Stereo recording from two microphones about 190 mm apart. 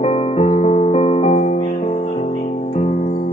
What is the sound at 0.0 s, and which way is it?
Music, 35° left (ahead or behind).